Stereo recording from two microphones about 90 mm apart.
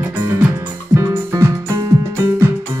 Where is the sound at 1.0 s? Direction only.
35° right (ahead or behind).